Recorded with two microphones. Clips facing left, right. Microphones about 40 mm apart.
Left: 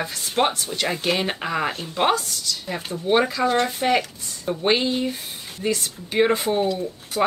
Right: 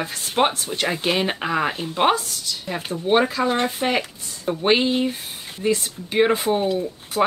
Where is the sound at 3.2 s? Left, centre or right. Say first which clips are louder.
Even; right.